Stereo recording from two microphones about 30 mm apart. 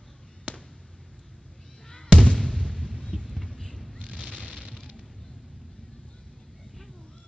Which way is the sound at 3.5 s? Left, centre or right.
Left.